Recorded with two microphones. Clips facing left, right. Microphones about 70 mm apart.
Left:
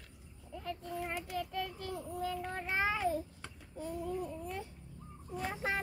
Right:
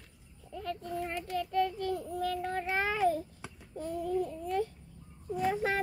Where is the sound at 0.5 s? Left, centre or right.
Centre.